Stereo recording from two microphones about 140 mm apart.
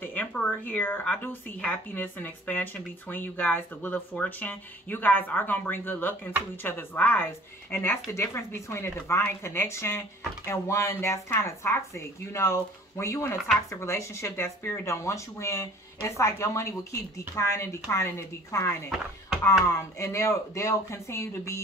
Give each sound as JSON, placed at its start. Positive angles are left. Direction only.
{"t": 0.0, "sound": "a woman's voice", "side_deg": 15}
{"t": 18.9, "sound": "speech", "side_deg": 0}
{"t": 20.0, "sound": "a woman's voice", "side_deg": 20}